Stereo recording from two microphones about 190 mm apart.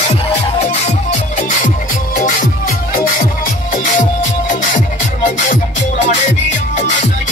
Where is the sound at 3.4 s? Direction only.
45° left (ahead or behind).